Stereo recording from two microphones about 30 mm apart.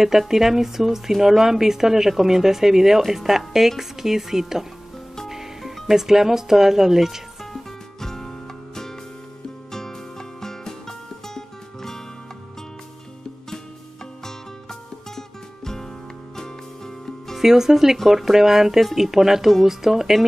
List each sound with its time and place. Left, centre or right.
0.0 s speech: centre
5.9 s speech: centre
7.5 s music: centre
14.2 s music: centre
17.4 s speech: centre